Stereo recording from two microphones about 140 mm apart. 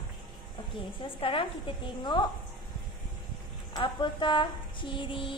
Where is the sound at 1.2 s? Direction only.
35° left (ahead or behind).